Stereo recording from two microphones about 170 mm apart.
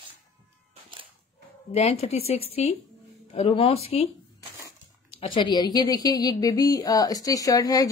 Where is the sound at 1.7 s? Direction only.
35° left (ahead or behind).